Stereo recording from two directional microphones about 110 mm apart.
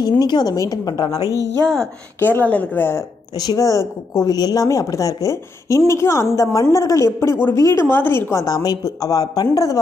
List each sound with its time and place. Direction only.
0.0 s a woman's voice: 40° left (ahead or behind)
1.2 s a woman's voice: 30° right (ahead or behind)
2.1 s a woman's voice: 15° left (ahead or behind)
3.3 s a woman's voice: 35° left (ahead or behind)